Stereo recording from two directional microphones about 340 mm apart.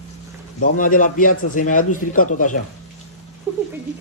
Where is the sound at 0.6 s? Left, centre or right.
Left.